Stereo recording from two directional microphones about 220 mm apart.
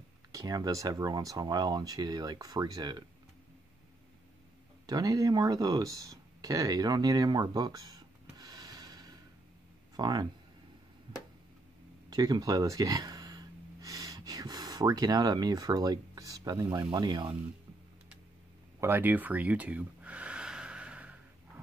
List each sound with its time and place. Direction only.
0.3 s speech: 15° right (ahead or behind)
4.8 s speech: 15° right (ahead or behind)
12.1 s gasp: 15° right (ahead or behind)
16.9 s speech: 20° right (ahead or behind)
18.8 s a sound: 10° right (ahead or behind)